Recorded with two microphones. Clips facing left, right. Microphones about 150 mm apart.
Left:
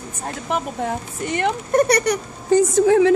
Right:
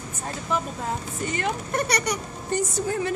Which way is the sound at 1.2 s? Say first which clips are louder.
Left 7 dB; 65° left (ahead or behind).